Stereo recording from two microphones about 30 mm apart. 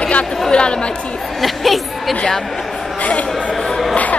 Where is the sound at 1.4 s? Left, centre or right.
Centre.